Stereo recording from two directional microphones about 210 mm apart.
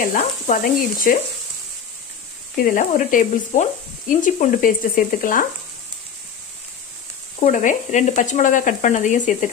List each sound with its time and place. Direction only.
0.0 s speech: 40° left (ahead or behind)
2.6 s speech: 40° left (ahead or behind)
7.3 s speech: 35° left (ahead or behind)